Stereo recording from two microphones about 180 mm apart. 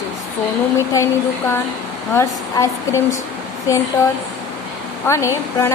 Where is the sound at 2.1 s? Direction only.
15° left (ahead or behind).